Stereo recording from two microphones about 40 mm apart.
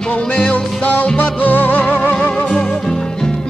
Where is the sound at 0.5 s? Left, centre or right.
Left.